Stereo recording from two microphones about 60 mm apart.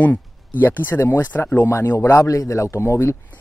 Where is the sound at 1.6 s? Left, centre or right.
Left.